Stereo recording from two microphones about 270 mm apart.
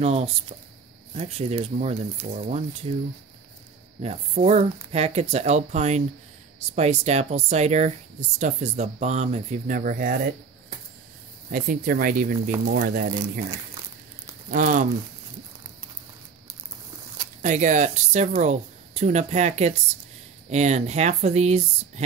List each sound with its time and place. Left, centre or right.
0.0 s speech: right
4.0 s speech: right
11.5 s speech: right
14.5 s speech: right
17.4 s speech: right